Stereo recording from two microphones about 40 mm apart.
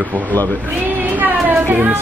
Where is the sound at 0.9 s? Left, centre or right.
Right.